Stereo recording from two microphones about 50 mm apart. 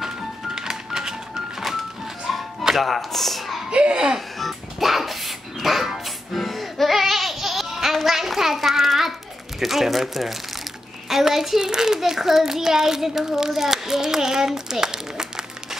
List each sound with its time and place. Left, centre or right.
0.6 s music: centre
3.7 s a child's voice: centre
4.4 s music: centre
9.6 s a child's voice: centre